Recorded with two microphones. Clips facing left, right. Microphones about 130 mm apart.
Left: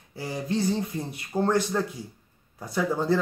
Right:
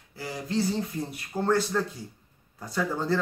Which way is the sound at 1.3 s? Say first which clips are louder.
Left 1 dB; 15° left (ahead or behind).